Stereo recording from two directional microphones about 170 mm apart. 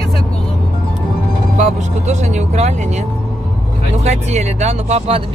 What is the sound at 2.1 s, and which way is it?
Speech, 45° right (ahead or behind).